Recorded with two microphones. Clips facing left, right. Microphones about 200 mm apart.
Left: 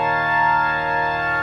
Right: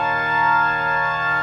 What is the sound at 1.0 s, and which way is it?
Organ, 35° left (ahead or behind).